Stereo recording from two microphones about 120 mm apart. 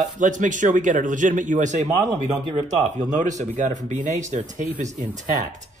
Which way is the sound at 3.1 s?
90° right.